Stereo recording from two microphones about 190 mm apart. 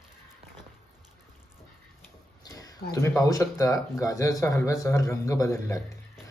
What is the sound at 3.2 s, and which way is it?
Speech, 15° left (ahead or behind).